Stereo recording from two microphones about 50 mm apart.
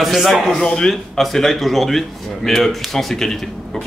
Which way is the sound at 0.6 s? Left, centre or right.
Centre.